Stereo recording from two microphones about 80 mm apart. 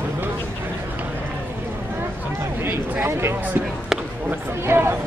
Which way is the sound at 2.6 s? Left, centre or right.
Right.